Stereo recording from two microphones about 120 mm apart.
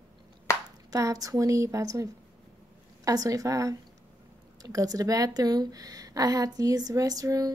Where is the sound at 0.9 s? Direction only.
30° right (ahead or behind).